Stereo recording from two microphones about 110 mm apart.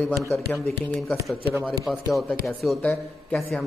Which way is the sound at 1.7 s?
Centre (ahead or behind).